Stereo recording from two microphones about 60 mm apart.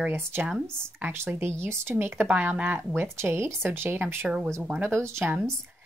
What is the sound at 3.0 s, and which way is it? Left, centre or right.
Speech, right.